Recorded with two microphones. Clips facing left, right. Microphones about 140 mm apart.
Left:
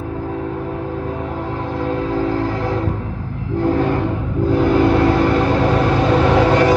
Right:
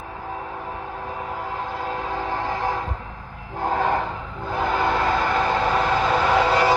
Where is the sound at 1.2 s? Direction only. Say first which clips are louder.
Left 5 dB; 45° left (ahead or behind).